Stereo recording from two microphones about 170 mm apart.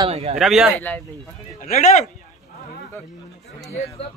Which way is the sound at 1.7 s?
45° left (ahead or behind).